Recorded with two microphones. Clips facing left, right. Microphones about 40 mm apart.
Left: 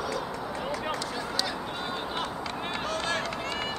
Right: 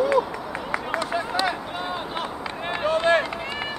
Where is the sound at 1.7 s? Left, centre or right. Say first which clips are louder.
Right 4 dB; centre.